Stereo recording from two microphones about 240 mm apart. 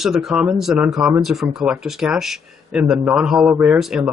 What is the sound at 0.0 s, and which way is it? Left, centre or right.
Speech, centre.